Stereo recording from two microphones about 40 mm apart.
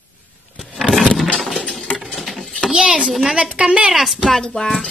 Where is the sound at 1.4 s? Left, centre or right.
Centre.